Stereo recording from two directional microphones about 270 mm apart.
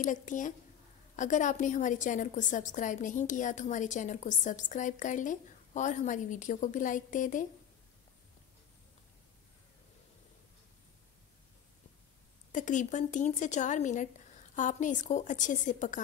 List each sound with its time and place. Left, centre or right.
0.0 s a woman's voice: left
12.5 s a woman's voice: left